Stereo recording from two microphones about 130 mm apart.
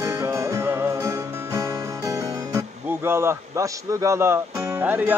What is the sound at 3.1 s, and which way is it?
A man's voice, 20° right (ahead or behind).